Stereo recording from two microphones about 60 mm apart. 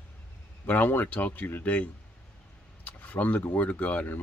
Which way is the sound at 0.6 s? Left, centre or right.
Left.